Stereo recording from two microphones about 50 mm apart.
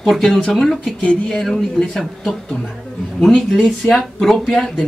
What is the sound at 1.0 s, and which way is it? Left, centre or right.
Speech, centre.